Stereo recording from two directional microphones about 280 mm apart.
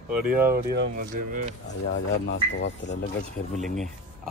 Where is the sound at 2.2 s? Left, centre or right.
Left.